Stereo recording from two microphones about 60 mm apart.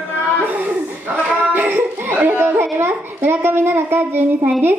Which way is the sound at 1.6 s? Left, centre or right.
Right.